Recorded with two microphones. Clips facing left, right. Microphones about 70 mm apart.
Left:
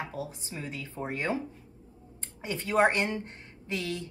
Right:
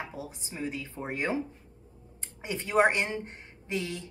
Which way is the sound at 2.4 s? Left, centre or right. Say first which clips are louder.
Even; centre.